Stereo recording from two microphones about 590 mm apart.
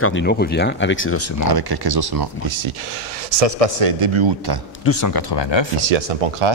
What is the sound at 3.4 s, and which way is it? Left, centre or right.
Speech, right.